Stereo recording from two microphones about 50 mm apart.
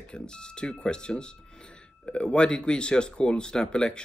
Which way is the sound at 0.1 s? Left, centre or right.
Centre.